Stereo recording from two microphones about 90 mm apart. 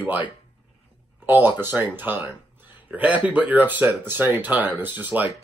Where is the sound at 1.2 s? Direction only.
20° right (ahead or behind).